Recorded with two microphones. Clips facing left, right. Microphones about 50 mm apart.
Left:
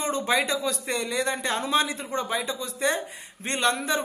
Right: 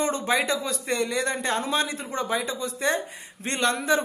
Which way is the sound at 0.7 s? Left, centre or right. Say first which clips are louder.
Right 1 dB; right.